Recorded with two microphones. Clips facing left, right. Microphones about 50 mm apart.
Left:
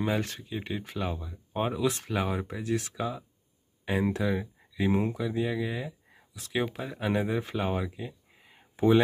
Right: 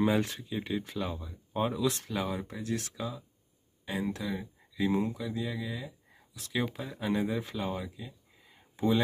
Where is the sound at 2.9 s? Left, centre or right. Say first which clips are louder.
Left 5 dB; left.